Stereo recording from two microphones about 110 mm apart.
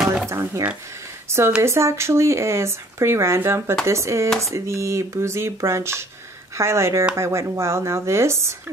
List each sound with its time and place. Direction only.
0.3 s speech: 30° right (ahead or behind)